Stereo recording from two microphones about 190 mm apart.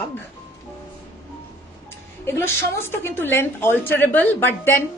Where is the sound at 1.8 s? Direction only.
10° left (ahead or behind).